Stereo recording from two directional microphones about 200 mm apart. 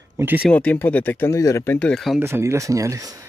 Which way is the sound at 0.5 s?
5° left (ahead or behind).